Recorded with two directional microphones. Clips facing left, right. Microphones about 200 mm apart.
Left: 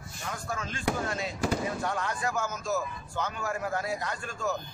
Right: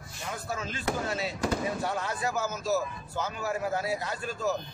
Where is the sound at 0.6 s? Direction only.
30° right (ahead or behind).